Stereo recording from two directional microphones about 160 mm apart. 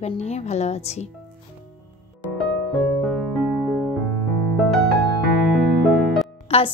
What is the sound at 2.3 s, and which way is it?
Music, centre (ahead or behind).